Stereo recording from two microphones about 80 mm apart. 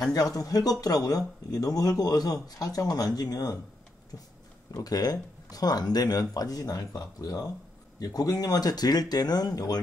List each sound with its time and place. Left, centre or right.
0.1 s speech: left
4.7 s speech: left